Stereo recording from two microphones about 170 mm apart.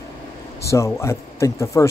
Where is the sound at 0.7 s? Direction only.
15° left (ahead or behind).